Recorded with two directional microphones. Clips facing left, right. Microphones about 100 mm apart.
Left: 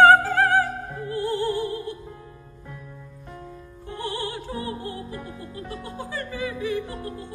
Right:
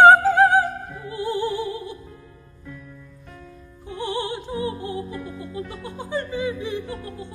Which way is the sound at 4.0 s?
20° right (ahead or behind).